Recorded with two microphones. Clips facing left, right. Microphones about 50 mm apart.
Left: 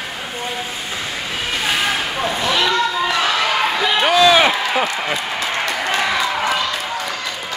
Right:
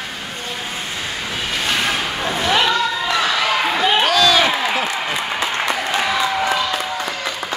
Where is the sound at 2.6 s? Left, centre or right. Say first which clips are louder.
Left 1 dB; centre.